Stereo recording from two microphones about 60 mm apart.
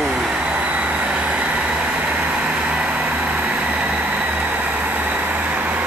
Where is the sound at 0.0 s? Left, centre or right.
Centre.